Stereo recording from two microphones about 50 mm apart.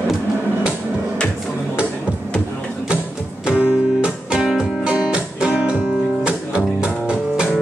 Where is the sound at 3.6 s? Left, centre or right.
Right.